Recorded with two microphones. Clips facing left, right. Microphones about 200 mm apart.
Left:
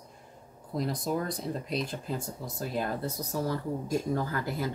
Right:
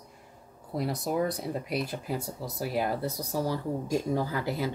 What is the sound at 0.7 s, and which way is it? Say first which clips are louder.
Speech: right 1 dB; 65° right (ahead or behind).